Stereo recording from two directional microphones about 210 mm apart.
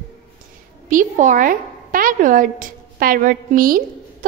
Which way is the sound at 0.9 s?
35° right (ahead or behind).